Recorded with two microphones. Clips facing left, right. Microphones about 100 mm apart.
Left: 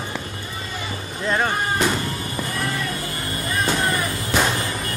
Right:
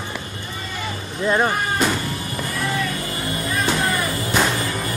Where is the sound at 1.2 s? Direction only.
10° right (ahead or behind).